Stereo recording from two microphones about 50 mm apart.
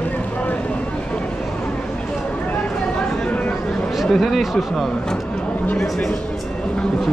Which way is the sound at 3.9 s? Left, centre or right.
Centre.